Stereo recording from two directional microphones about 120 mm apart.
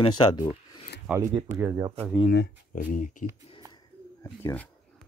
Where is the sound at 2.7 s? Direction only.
90° left.